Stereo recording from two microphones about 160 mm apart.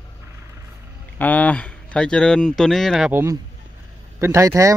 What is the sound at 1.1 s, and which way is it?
Speech, 10° left (ahead or behind).